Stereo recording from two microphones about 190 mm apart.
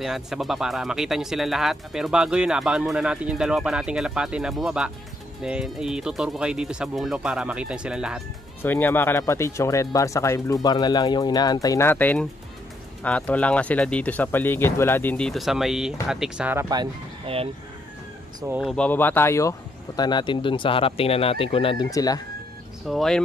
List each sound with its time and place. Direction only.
0.0 s speech: centre (ahead or behind)
8.6 s speech: 10° left (ahead or behind); by 16.6 s 5° right (ahead or behind)
16.6 s speech: 20° right (ahead or behind)
18.5 s speech: centre (ahead or behind); by 21.8 s 30° left (ahead or behind)
21.9 s speech: 20° left (ahead or behind)
22.8 s speech: centre (ahead or behind)